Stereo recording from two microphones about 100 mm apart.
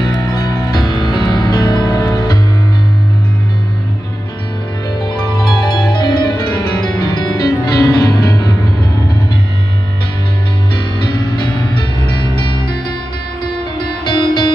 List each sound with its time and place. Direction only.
0.0 s music: 45° left (ahead or behind)
5.4 s music: 50° left (ahead or behind)
11.0 s music: 50° left (ahead or behind)
14.0 s music: 50° left (ahead or behind)